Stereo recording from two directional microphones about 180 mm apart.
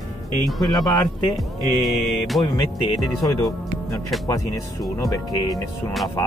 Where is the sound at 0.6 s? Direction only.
Centre (ahead or behind).